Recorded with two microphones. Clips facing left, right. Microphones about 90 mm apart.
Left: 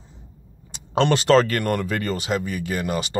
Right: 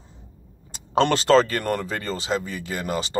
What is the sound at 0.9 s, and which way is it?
Speech, 35° right (ahead or behind).